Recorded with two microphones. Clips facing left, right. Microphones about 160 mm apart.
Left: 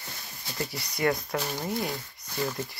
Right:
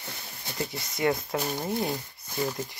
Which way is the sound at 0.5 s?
20° right (ahead or behind).